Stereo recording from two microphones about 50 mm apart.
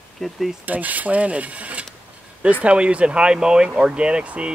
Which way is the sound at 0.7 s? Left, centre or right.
Right.